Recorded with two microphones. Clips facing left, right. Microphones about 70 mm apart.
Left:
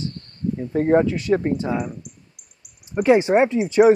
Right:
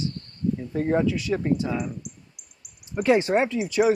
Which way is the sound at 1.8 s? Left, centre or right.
Left.